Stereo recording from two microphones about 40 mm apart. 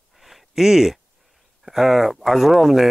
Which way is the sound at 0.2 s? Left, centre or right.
Centre.